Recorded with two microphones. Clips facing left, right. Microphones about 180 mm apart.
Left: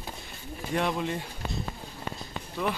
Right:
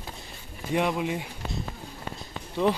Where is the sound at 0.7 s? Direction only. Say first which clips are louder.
Right 3 dB; 10° right (ahead or behind).